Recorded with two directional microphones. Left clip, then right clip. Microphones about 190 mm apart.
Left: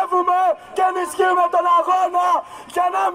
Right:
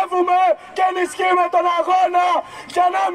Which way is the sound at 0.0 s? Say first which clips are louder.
Right 1 dB; 10° right (ahead or behind).